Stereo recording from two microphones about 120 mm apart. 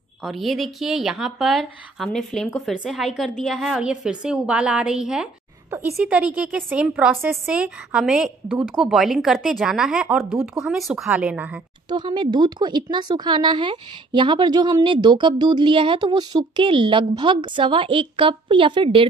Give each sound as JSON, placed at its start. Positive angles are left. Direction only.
{"t": 0.2, "sound": "a woman's voice", "side_deg": 0}
{"t": 5.7, "sound": "a woman's voice", "side_deg": -25}
{"t": 5.9, "sound": "a woman's voice", "side_deg": -10}
{"t": 11.1, "sound": "a woman's voice", "side_deg": -10}
{"t": 11.9, "sound": "a woman's voice", "side_deg": -40}